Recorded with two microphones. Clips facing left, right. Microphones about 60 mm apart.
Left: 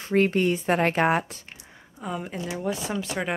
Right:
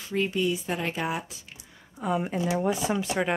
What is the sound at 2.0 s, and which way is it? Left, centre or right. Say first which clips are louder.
Speech: right 5 dB; centre.